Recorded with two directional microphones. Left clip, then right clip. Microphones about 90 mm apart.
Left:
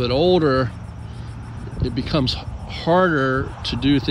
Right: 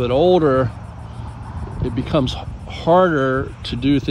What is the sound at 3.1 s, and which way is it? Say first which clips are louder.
Speech: right 1 dB; 45° right (ahead or behind).